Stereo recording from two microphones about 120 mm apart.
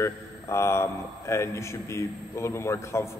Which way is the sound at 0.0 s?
25° left (ahead or behind).